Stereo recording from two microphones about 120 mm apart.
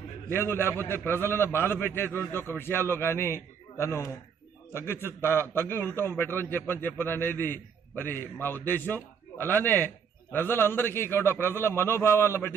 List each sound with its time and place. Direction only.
0.3 s a man's voice: 20° left (ahead or behind)